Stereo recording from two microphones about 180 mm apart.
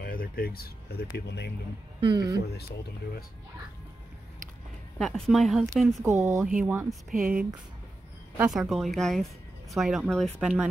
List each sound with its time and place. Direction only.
0.0 s speech: 55° left (ahead or behind)
2.0 s speech: 25° right (ahead or behind)
4.9 s speech: 5° left (ahead or behind)
6.0 s speech: 15° right (ahead or behind)
6.4 s speech: 5° right (ahead or behind)
7.1 s speech: 50° right (ahead or behind)
8.5 s speech: centre (ahead or behind)